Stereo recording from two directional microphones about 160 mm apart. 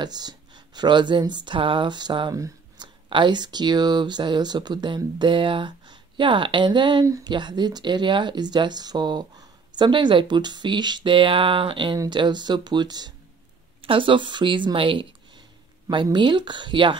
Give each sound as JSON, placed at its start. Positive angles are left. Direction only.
{"t": 0.0, "sound": "speech", "side_deg": -25}